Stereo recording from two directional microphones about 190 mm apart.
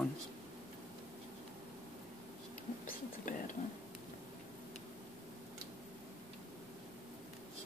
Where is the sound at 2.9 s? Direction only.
40° left (ahead or behind).